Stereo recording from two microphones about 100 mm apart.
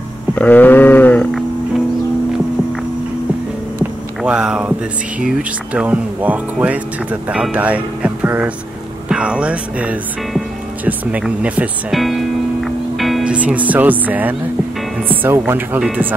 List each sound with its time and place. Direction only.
0.4 s a sound: 15° left (ahead or behind)
4.2 s speech: 10° right (ahead or behind)
9.1 s music: 10° right (ahead or behind)
10.9 s speech: 15° right (ahead or behind)
11.9 s speech: centre (ahead or behind)
12.6 s music: centre (ahead or behind)
13.2 s speech: 10° right (ahead or behind)